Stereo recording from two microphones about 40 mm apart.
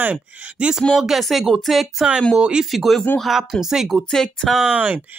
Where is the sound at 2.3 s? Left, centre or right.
Right.